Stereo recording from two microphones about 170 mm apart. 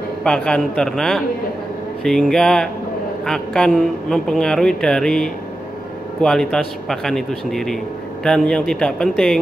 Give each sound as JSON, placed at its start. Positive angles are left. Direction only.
{"t": 0.2, "sound": "speech", "side_deg": 5}